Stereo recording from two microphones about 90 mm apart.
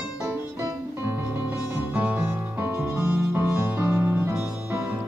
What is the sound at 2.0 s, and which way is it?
Music, 15° right (ahead or behind).